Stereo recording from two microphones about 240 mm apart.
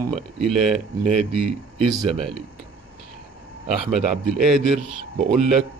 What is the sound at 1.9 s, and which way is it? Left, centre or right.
Speech, right.